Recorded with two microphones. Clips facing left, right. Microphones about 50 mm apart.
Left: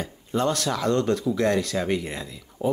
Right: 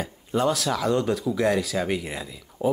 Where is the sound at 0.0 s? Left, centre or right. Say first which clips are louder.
Right 1 dB; centre.